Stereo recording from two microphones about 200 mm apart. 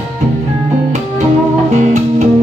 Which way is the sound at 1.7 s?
35° right (ahead or behind).